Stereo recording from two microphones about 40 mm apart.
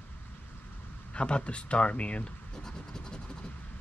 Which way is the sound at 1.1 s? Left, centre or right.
Left.